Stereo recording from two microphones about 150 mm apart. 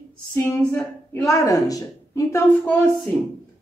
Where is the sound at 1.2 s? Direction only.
20° left (ahead or behind).